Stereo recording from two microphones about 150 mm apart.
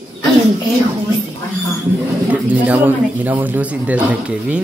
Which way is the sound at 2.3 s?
10° right (ahead or behind).